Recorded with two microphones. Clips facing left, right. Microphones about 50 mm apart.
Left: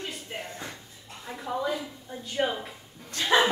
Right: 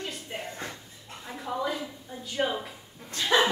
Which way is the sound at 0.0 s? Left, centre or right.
Centre.